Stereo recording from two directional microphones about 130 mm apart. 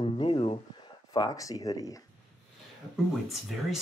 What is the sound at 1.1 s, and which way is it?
Speech, 30° left (ahead or behind).